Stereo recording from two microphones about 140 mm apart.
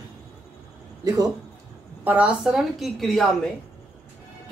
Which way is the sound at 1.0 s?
25° right (ahead or behind).